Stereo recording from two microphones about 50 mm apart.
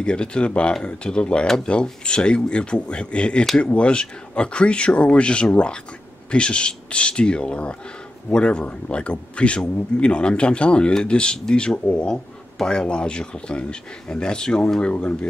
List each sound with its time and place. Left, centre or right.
0.0 s speech: centre